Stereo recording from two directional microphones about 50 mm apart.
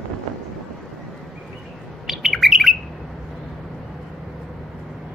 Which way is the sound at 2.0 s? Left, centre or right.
Centre.